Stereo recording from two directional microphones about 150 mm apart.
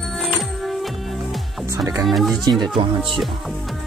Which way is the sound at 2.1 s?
Centre (ahead or behind).